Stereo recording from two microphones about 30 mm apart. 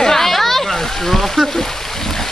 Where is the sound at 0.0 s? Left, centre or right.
Centre.